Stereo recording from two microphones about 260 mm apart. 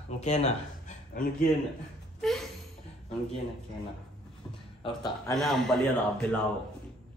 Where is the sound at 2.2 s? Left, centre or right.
Centre.